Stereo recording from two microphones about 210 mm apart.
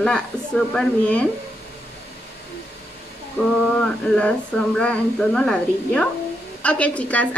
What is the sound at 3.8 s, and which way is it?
Speech, 5° left (ahead or behind).